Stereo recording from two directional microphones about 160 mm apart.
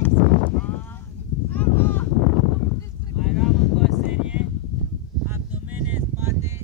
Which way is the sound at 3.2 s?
Centre (ahead or behind).